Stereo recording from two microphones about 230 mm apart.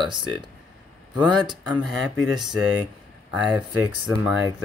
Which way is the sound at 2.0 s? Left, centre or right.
Centre.